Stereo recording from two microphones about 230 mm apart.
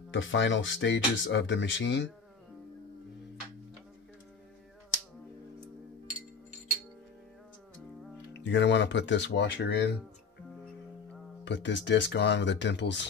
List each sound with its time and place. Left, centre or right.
0.1 s speech: left
8.3 s speech: left
11.4 s speech: left